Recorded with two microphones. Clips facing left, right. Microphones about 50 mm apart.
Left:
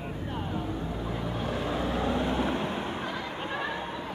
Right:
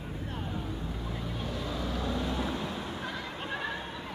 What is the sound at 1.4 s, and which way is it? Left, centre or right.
Vehicle, left.